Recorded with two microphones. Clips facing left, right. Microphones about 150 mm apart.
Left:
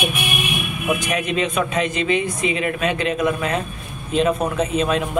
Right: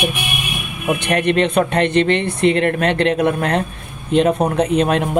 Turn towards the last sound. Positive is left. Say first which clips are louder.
# right 4 dB
turn(degrees=-65)  # may be behind; listen again after turning